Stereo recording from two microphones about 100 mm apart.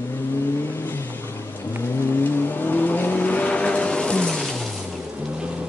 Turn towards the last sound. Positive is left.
turn(degrees=5)  # may be behind; listen again after turning